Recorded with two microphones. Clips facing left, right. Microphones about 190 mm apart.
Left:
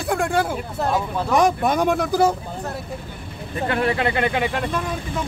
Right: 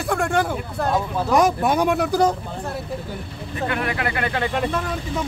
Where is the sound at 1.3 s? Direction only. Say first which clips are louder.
Even; centre (ahead or behind).